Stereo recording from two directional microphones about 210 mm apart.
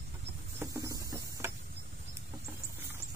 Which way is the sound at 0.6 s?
15° right (ahead or behind).